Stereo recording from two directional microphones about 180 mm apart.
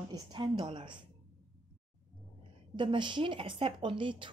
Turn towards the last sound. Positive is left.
turn(degrees=-30)  # may be behind; listen again after turning